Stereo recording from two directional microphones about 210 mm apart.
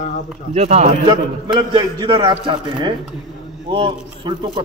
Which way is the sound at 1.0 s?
20° right (ahead or behind).